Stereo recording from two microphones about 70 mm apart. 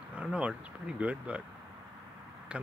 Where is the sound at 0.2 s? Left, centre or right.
Centre.